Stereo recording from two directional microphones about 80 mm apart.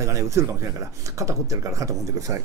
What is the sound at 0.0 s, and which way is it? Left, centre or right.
A man's voice, right.